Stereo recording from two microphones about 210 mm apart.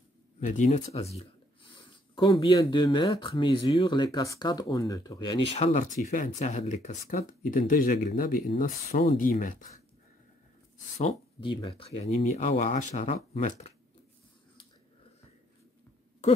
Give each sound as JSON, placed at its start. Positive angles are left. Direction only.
{"t": 0.5, "sound": "a sound", "side_deg": 35}
{"t": 2.6, "sound": "speech", "side_deg": 20}
{"t": 6.0, "sound": "speech", "side_deg": 35}
{"t": 11.0, "sound": "speech", "side_deg": 30}